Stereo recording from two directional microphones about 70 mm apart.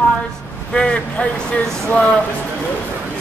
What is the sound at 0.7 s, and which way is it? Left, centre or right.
Speech, centre.